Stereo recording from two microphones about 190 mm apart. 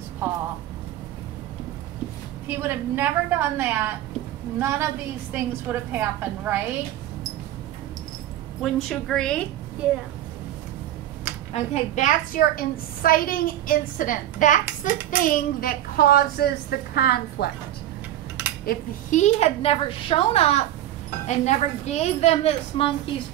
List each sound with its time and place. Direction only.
0.2 s a woman's voice: 10° right (ahead or behind)
2.4 s a woman's voice: 10° right (ahead or behind)
8.6 s a woman's voice: centre (ahead or behind)
11.5 s a woman's voice: 40° left (ahead or behind); by 17.5 s 60° left (ahead or behind)
18.7 s a woman's voice: 40° left (ahead or behind)